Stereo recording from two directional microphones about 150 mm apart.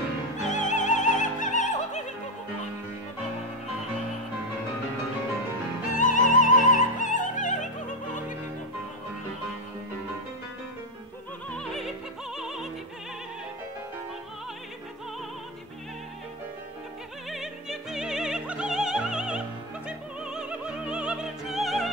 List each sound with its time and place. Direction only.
0.4 s opera: 55° left (ahead or behind)
5.9 s music: 60° left (ahead or behind)
11.5 s opera: centre (ahead or behind)
12.4 s music: 5° right (ahead or behind)
17.3 s opera: 5° right (ahead or behind)
19.9 s music: 5° right (ahead or behind)